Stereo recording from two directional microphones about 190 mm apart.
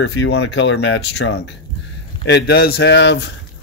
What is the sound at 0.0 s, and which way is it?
Speech, 65° left (ahead or behind).